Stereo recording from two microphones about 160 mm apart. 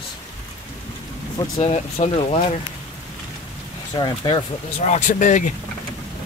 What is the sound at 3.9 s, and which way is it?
Speech, 30° left (ahead or behind).